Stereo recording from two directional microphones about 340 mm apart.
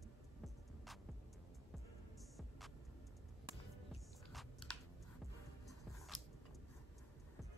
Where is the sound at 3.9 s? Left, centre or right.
Centre.